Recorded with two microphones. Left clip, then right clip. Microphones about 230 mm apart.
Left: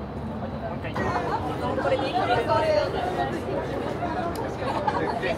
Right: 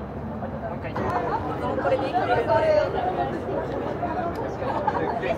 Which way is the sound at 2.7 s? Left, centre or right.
Left.